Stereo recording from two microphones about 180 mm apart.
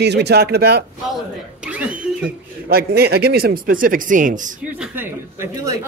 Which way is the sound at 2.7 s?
60° right (ahead or behind).